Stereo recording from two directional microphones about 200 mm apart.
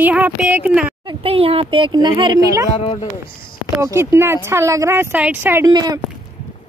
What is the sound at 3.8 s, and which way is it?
Speech, 15° right (ahead or behind).